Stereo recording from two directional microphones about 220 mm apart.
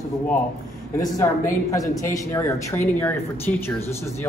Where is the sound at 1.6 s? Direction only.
15° left (ahead or behind).